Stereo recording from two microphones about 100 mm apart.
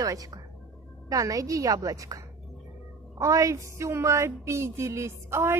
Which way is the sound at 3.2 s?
35° right (ahead or behind).